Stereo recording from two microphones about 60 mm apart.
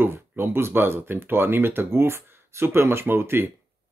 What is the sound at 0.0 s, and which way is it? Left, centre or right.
Speech, right.